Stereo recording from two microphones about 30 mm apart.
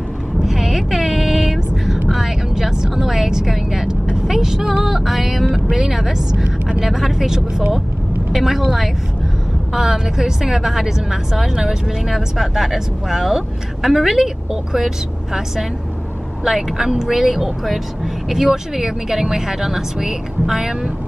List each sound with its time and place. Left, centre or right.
0.4 s vehicle: centre
0.7 s a sound: centre
2.0 s vehicle: centre
2.5 s vehicle: centre
4.8 s music: centre
5.5 s a woman's voice: centre
9.8 s speech: centre
16.4 s speech: centre